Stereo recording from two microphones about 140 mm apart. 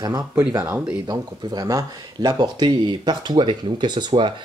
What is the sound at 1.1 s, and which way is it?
Speech, 25° right (ahead or behind).